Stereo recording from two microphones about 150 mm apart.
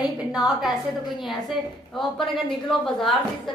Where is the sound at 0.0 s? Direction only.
5° right (ahead or behind).